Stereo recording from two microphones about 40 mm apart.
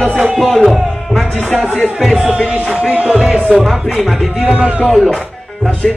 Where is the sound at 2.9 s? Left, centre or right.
Right.